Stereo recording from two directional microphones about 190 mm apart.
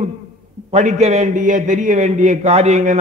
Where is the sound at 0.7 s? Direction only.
35° right (ahead or behind).